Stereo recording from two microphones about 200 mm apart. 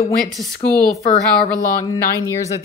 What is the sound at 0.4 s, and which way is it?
Speech, centre (ahead or behind).